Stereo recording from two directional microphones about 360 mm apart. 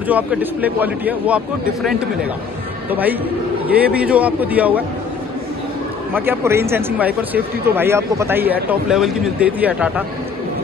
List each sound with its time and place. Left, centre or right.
0.0 s speech: centre
6.1 s speech: centre